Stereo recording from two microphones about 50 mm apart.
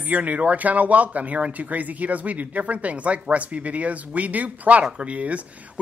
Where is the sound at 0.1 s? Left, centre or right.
Right.